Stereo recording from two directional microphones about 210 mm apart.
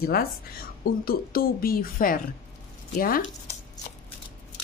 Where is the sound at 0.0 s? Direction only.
45° left (ahead or behind).